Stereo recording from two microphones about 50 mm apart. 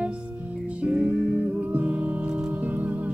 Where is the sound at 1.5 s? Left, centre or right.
Right.